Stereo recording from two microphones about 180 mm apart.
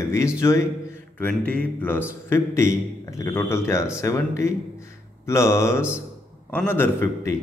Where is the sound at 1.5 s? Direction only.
10° left (ahead or behind).